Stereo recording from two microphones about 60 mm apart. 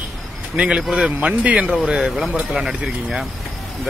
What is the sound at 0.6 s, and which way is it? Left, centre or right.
Speech, centre.